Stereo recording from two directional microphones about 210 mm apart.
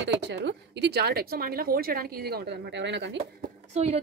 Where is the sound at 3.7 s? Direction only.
30° right (ahead or behind).